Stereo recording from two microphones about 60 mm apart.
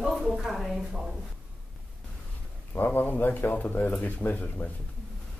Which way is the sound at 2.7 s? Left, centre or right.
Left.